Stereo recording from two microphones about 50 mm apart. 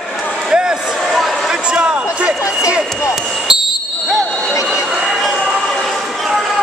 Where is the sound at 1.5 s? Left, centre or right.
Right.